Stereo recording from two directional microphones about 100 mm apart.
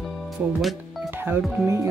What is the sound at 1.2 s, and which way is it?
Speech, 25° right (ahead or behind).